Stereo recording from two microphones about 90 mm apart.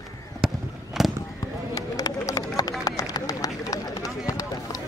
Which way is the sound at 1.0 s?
5° right (ahead or behind).